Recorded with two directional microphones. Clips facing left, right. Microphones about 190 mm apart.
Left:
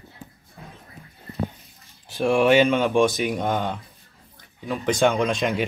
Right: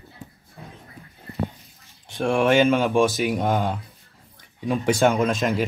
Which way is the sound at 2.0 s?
Centre (ahead or behind).